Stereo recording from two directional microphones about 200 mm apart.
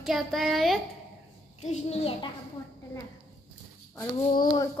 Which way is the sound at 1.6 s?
35° left (ahead or behind).